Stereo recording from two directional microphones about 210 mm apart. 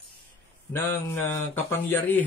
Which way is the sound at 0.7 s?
10° left (ahead or behind).